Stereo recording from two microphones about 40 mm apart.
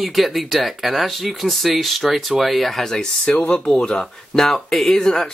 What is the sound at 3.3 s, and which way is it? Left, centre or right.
Speech, left.